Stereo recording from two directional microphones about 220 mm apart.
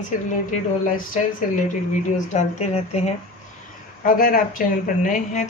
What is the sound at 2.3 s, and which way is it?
A woman's voice, 30° left (ahead or behind).